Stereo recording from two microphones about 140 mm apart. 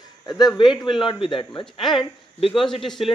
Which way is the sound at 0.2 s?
30° left (ahead or behind).